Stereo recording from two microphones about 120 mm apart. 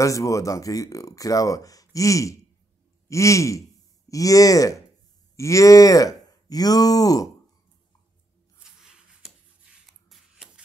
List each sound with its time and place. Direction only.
0.0 s speech: 25° left (ahead or behind)
8.8 s a sound: 5° right (ahead or behind)
10.0 s shuffle: centre (ahead or behind)